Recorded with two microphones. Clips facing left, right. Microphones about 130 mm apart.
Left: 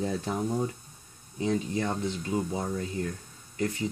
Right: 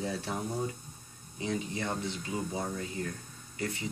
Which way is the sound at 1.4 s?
40° left (ahead or behind).